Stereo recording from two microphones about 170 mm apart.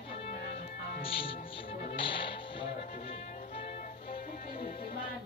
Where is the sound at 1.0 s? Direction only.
30° left (ahead or behind).